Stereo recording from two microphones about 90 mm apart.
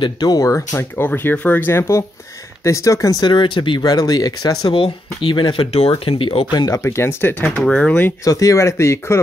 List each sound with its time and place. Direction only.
0.0 s speech: 50° left (ahead or behind)
0.6 s speech: 25° left (ahead or behind)
3.3 s speech: 60° left (ahead or behind)
3.8 s speech: 45° left (ahead or behind)
4.7 s speech: 70° left (ahead or behind)
6.5 s speech: 50° left (ahead or behind)
6.8 s speech: 30° left (ahead or behind)
7.5 s speech: 10° left (ahead or behind)
8.2 s speech: 40° left (ahead or behind)